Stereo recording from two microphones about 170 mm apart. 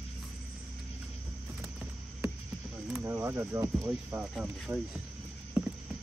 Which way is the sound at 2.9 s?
10° right (ahead or behind).